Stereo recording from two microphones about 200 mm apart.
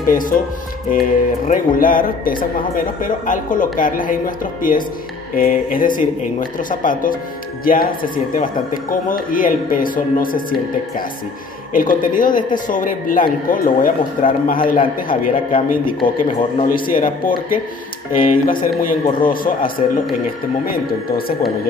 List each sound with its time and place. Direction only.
0.0 s speech: 45° left (ahead or behind)
1.5 s speech: 45° left (ahead or behind)
11.7 s speech: 40° left (ahead or behind)
16.0 s speech: 25° left (ahead or behind)
16.6 s speech: 45° left (ahead or behind)